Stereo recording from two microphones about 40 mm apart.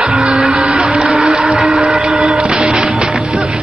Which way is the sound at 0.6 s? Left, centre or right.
Right.